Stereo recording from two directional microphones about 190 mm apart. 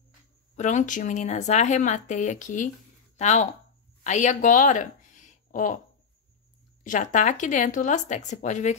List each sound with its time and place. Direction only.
0.6 s speech: 40° left (ahead or behind)
6.8 s speech: 40° left (ahead or behind)